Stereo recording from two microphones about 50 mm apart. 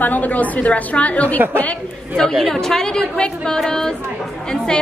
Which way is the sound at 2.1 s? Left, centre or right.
Centre.